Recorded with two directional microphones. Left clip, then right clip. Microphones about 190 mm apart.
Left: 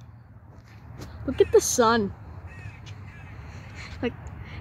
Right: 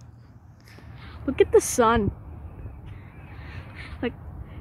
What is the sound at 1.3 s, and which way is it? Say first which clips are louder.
Speech: right 1 dB; 10° right (ahead or behind).